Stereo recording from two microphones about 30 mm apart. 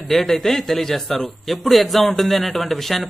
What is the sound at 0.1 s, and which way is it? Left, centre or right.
A man's voice, centre.